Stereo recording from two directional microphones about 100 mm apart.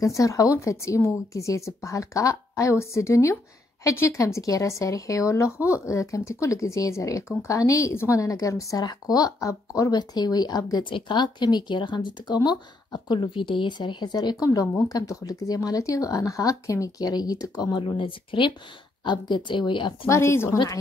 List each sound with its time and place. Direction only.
0.0 s speech: 35° left (ahead or behind)
10.8 s speech: 55° left (ahead or behind)
20.1 s speech: 25° left (ahead or behind)
20.5 s speech: 45° left (ahead or behind)